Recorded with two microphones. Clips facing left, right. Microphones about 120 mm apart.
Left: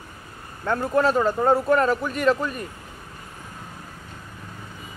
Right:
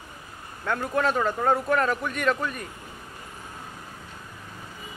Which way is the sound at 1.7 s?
5° left (ahead or behind).